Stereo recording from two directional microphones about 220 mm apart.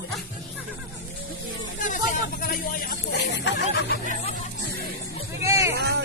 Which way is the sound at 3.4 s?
50° left (ahead or behind).